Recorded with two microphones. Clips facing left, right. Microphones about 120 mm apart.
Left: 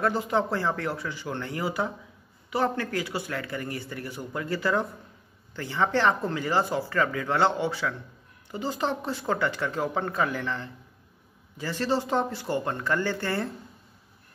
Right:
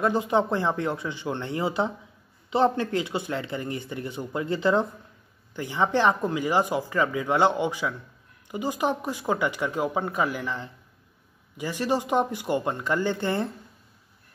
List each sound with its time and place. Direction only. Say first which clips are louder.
0.0 s speech: right 2 dB; 20° right (ahead or behind)